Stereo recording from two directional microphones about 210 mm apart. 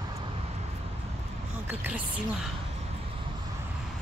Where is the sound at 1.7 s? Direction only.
10° right (ahead or behind).